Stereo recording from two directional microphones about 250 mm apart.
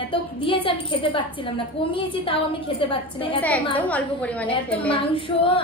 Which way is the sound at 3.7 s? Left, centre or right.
Centre.